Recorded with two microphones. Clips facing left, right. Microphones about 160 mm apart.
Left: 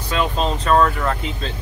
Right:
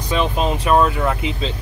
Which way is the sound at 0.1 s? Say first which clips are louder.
Right 2 dB; 15° right (ahead or behind).